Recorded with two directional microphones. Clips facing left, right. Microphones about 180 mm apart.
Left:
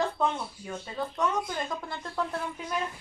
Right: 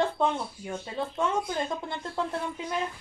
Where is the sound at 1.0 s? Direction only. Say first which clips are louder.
Right 1 dB; 25° right (ahead or behind).